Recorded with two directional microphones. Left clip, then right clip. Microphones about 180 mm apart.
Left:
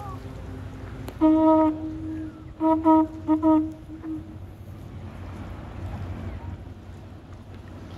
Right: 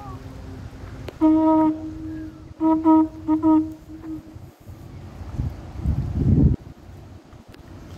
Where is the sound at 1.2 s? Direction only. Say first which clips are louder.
Right 1 dB; 55° left (ahead or behind).